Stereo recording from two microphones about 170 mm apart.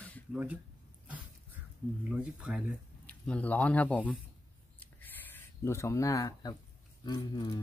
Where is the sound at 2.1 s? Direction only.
5° right (ahead or behind).